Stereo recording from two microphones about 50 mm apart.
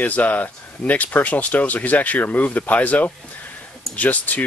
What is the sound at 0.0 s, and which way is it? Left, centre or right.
Speech, left.